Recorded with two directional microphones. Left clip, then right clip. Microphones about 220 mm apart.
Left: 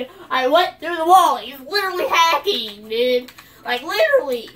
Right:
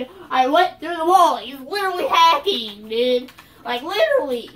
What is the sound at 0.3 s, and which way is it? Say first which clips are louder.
A child's voice: even; 5° left (ahead or behind).